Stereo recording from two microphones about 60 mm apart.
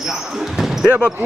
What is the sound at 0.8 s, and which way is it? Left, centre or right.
Basketball bounce, right.